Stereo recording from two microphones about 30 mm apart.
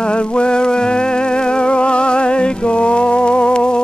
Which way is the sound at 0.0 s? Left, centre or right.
Left.